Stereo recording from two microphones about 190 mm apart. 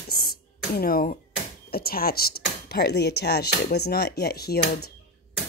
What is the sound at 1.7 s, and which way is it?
Speech, 55° left (ahead or behind).